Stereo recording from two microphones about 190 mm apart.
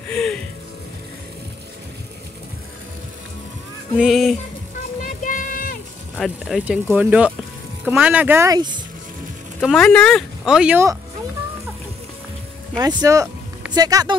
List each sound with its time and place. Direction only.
0.1 s music: 5° left (ahead or behind)
3.9 s speech: centre (ahead or behind)
5.0 s music: 45° left (ahead or behind)
6.1 s speech: centre (ahead or behind); by 8.8 s 20° right (ahead or behind)
9.6 s speech: 5° left (ahead or behind)
12.7 s speech: 20° right (ahead or behind)